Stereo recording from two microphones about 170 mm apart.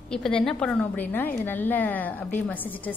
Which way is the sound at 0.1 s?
5° left (ahead or behind).